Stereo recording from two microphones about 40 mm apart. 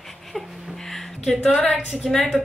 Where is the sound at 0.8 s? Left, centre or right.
Centre.